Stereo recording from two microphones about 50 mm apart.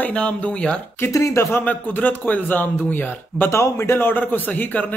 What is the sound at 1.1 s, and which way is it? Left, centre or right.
Speech, left.